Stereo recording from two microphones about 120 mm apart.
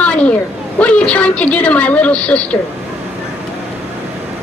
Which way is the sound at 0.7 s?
10° left (ahead or behind).